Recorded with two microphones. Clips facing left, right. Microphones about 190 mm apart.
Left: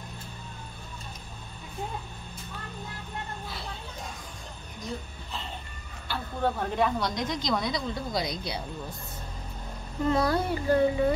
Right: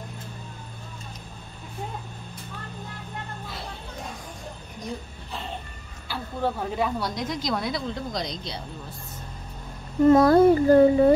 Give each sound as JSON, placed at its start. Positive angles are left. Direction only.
{"t": 6.0, "sound": "a woman's voice", "side_deg": -5}
{"t": 8.1, "sound": "speech", "side_deg": 10}
{"t": 10.0, "sound": "speech", "side_deg": -50}